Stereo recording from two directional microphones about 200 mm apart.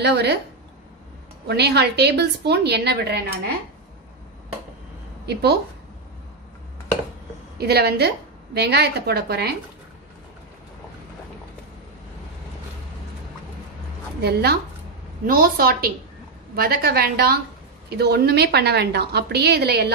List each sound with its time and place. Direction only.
0.0 s a woman's voice: 55° right (ahead or behind)
1.5 s a woman's voice: 55° right (ahead or behind)
5.2 s a woman's voice: 55° right (ahead or behind)
7.5 s a woman's voice: 55° right (ahead or behind)
14.2 s a woman's voice: 50° right (ahead or behind)